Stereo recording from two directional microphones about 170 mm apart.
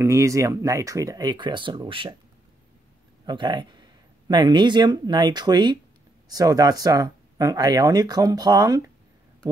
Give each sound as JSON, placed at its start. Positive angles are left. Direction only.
{"t": 0.0, "sound": "speech", "side_deg": -20}
{"t": 3.3, "sound": "speech", "side_deg": -25}